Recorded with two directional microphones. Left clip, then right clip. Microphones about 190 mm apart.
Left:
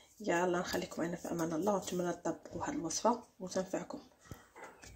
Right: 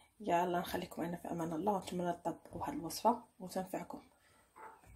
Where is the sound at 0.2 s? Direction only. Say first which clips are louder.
Left 1 dB; 15° right (ahead or behind).